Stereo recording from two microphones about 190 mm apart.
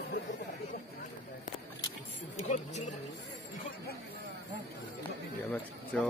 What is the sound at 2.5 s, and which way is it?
Speech, 35° left (ahead or behind).